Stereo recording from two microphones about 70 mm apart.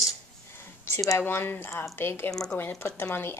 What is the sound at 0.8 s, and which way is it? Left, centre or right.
Speech, left.